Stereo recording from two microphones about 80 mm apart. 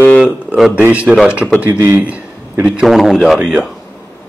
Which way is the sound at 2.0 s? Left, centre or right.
Centre.